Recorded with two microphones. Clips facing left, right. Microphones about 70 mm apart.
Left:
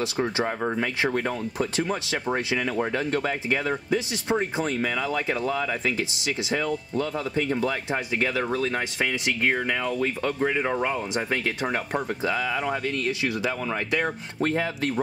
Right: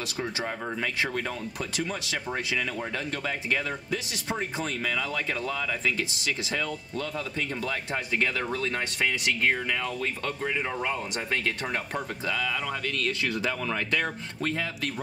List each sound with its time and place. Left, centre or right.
0.0 s speech: left
12.3 s speech: left
13.2 s speech: centre
14.4 s speech: left